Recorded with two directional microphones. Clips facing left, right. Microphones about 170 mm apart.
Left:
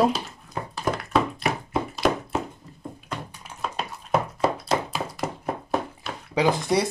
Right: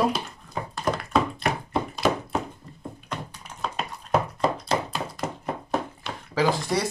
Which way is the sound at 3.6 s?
5° left (ahead or behind).